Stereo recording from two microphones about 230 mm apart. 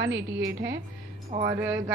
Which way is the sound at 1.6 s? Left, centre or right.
Centre.